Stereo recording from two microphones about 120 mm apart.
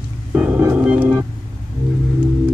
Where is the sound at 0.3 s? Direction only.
10° right (ahead or behind).